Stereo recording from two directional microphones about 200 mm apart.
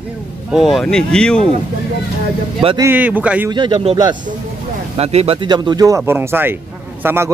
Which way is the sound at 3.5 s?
25° right (ahead or behind).